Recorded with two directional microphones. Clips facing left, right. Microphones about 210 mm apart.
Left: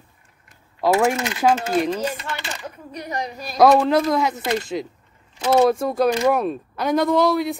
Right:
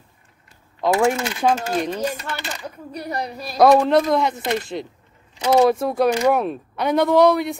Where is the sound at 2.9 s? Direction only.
35° right (ahead or behind).